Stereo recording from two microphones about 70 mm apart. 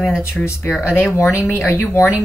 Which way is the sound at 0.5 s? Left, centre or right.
Left.